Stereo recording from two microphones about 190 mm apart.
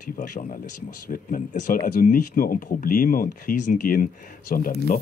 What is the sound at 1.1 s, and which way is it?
Speech, 45° left (ahead or behind).